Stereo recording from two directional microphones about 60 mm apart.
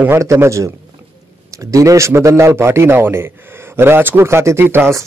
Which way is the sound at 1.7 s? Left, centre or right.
Right.